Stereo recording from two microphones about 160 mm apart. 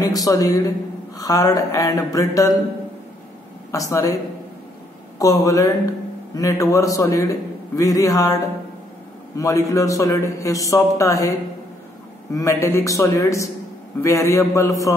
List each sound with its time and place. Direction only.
0.0 s a man's voice: 20° left (ahead or behind)
3.7 s a man's voice: 20° left (ahead or behind)
5.2 s a man's voice: 20° left (ahead or behind)
9.4 s a man's voice: 20° left (ahead or behind)
12.4 s a man's voice: 20° left (ahead or behind)